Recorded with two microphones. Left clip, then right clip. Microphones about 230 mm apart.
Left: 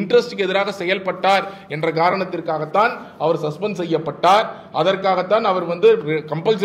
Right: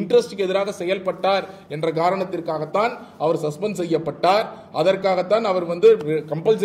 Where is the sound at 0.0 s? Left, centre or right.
Centre.